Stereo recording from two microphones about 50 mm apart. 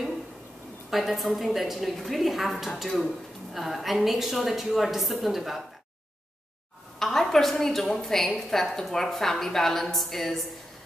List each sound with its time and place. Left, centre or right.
0.8 s a woman's voice: centre
7.0 s a woman's voice: centre